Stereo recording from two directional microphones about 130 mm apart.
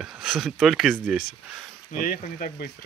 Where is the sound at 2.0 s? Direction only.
90° left.